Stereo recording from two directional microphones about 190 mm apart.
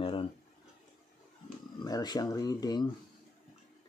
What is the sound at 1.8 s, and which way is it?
Speech, 20° left (ahead or behind).